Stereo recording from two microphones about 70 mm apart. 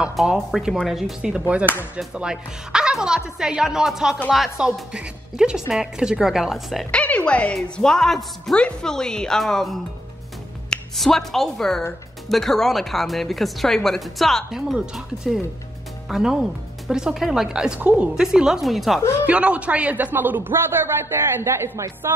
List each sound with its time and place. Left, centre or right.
0.1 s speech: centre
2.1 s a woman's voice: centre
6.9 s a woman's voice: centre; by 18.1 s right
18.1 s a woman's voice: centre
19.2 s a man's voice: centre; by 22.1 s right